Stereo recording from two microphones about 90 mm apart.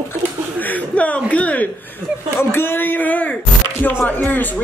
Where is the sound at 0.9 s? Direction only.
15° left (ahead or behind).